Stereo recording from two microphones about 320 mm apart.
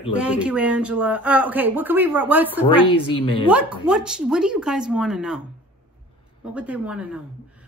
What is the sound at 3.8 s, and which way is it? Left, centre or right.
Speech, centre.